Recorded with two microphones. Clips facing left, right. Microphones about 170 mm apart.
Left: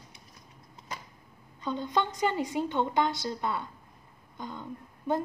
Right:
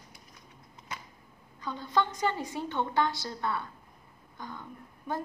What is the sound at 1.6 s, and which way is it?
A woman's voice, 20° left (ahead or behind).